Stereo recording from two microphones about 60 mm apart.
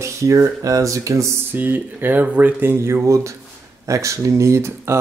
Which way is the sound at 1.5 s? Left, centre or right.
Right.